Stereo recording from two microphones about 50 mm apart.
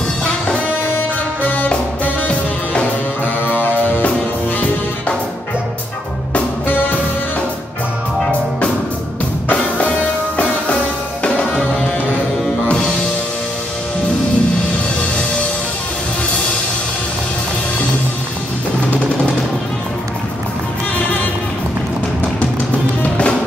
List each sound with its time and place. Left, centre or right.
0.9 s music: left
6.3 s music: left
8.3 s music: left
23.0 s music: left